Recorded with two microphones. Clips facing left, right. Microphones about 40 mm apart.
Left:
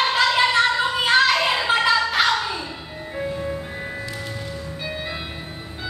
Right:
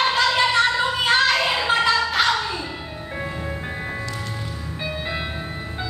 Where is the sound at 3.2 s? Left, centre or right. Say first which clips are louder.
Left 3 dB; centre.